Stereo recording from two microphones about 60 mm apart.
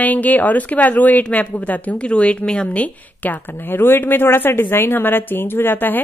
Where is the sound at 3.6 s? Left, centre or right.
Left.